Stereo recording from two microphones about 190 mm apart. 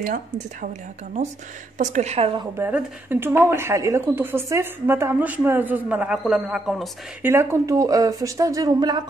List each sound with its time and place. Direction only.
0.0 s speech: 45° right (ahead or behind)
1.8 s a woman's voice: 40° right (ahead or behind)
2.6 s a woman's voice: 10° right (ahead or behind)
7.2 s a woman's voice: 15° right (ahead or behind)